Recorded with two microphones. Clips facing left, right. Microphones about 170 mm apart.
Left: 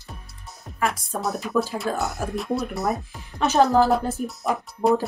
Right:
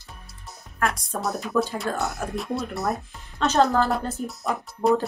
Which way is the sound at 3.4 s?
15° left (ahead or behind).